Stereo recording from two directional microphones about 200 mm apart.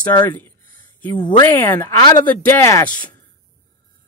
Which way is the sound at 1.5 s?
10° left (ahead or behind).